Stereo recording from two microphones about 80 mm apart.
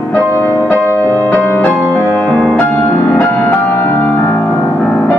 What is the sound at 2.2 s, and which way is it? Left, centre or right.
Music, centre.